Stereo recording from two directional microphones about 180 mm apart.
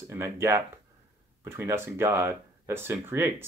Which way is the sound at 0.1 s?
15° right (ahead or behind).